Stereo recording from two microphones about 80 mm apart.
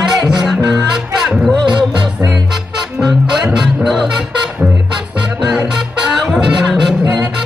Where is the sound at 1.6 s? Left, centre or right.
Right.